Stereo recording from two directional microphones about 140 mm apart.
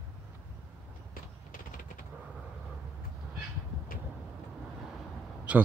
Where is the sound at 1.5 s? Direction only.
70° left (ahead or behind).